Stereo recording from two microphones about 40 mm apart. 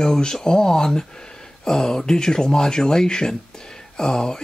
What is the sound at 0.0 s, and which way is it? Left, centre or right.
Speech, centre.